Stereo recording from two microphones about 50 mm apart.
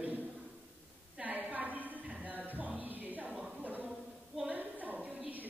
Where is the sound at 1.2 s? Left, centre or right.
Right.